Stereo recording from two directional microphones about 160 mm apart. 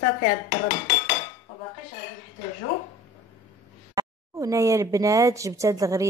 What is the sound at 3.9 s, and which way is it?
Speech, 20° right (ahead or behind).